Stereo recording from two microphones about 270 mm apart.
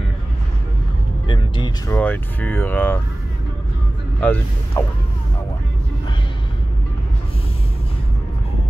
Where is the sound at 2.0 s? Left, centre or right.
Centre.